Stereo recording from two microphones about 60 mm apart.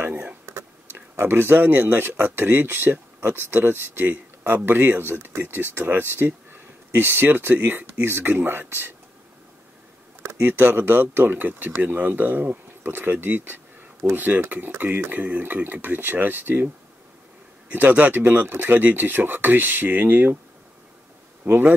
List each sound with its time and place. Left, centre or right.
0.0 s a sound: right
0.5 s a sound: right
2.2 s speech: right
4.0 s speech: right
10.4 s speech: right
21.5 s speech: right